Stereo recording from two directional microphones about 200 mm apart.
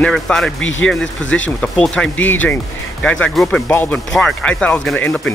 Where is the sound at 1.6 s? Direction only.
5° left (ahead or behind).